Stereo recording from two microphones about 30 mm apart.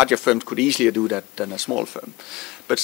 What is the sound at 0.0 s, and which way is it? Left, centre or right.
Speech, centre.